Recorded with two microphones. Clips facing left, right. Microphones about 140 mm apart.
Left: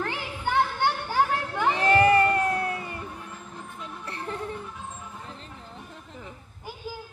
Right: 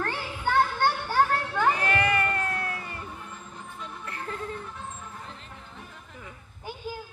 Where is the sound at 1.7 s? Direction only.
25° left (ahead or behind).